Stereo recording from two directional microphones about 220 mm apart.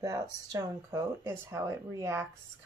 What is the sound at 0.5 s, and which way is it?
Speech, 15° right (ahead or behind).